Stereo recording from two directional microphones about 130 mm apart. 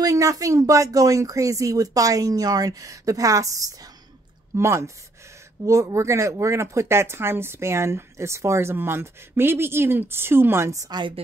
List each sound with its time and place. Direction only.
0.0 s speech: 25° right (ahead or behind)